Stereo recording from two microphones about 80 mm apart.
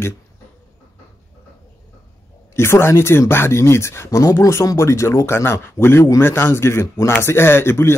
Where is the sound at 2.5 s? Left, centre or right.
Left.